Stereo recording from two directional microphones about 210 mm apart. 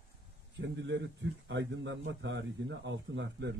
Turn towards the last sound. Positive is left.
turn(degrees=-60)  # may be behind; listen again after turning